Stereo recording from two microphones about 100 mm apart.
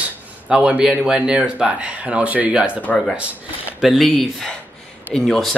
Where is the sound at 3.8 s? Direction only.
Centre (ahead or behind).